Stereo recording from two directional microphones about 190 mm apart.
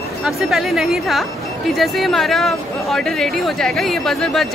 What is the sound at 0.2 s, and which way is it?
Speech, centre (ahead or behind).